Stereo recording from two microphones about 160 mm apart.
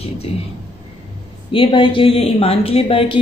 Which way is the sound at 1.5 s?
35° left (ahead or behind).